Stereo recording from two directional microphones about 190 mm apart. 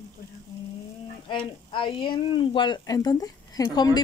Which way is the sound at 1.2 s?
25° left (ahead or behind).